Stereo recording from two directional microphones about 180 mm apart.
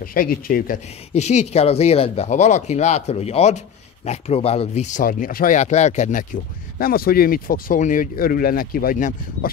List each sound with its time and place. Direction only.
0.0 s speech: 50° left (ahead or behind)
0.8 s speech: 40° left (ahead or behind)